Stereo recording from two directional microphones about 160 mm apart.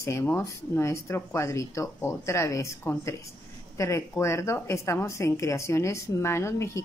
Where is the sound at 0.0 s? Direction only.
15° left (ahead or behind).